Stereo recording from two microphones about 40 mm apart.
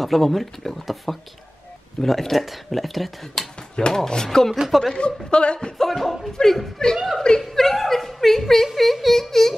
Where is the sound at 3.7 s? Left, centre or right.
Centre.